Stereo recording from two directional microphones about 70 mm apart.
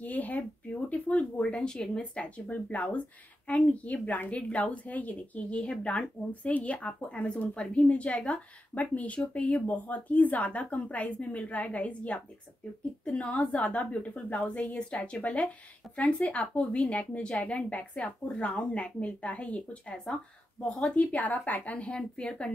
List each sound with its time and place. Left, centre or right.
0.0 s a woman's voice: left